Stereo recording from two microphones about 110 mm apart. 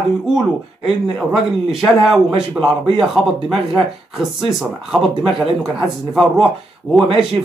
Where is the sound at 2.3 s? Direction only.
50° right (ahead or behind).